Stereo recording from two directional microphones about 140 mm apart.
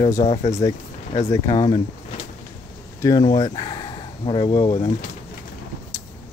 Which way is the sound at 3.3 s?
30° left (ahead or behind).